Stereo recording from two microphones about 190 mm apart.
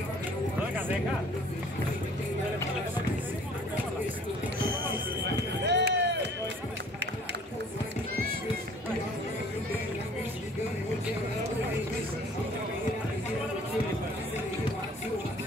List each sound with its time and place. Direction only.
5.6 s run: 60° right (ahead or behind)